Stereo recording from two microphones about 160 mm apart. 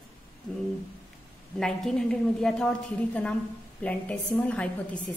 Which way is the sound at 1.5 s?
5° left (ahead or behind).